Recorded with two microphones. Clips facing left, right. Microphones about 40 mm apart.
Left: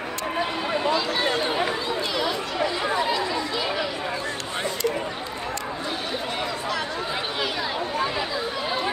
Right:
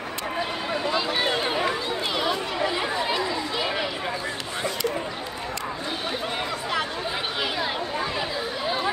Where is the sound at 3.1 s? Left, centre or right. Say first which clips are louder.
Left 1 dB; right.